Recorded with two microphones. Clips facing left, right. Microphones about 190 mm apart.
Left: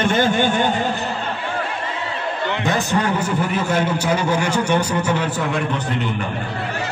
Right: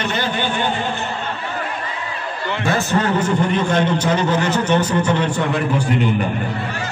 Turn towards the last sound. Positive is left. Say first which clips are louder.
# right 2 dB
turn(degrees=5)  # may be behind; listen again after turning